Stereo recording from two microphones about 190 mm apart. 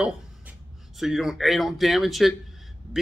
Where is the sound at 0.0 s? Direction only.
5° right (ahead or behind).